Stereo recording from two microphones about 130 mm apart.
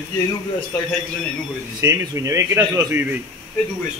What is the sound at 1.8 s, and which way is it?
A man's voice, 25° right (ahead or behind).